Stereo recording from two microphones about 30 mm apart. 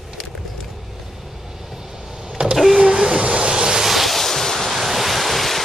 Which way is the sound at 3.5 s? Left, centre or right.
Right.